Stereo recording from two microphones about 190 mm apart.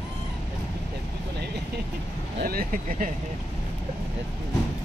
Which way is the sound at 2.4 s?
50° right (ahead or behind).